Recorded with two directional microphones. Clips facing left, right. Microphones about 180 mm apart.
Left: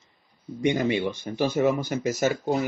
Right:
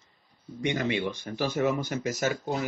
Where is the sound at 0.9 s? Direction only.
15° left (ahead or behind).